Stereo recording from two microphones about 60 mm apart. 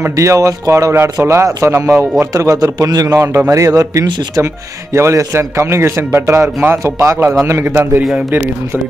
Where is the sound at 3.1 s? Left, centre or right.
Right.